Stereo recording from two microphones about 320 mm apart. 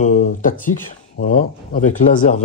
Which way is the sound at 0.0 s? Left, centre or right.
Left.